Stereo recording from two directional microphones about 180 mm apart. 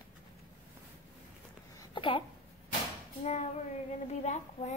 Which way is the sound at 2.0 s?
30° left (ahead or behind).